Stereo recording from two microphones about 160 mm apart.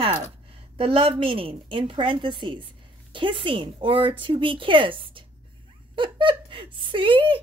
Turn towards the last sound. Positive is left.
turn(degrees=-35)  # may be behind; listen again after turning